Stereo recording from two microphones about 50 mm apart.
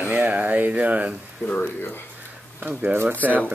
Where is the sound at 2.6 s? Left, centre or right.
Right.